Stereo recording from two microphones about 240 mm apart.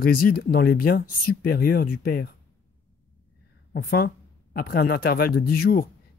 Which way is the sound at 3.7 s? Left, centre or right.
Left.